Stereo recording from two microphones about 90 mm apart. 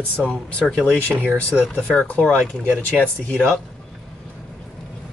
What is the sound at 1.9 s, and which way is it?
Speech, 10° left (ahead or behind).